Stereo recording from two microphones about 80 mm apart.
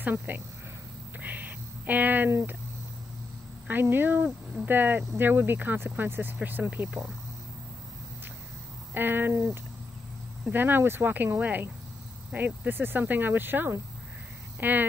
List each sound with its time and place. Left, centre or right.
0.0 s speech: right
1.2 s a sound: right
3.8 s speech: right
8.9 s speech: right